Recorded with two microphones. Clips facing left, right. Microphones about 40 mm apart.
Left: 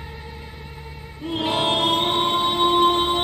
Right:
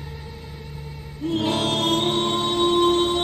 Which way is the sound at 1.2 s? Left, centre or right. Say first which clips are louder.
Even; centre.